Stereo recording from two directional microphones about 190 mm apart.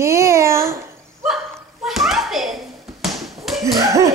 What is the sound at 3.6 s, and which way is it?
Slap, 15° right (ahead or behind).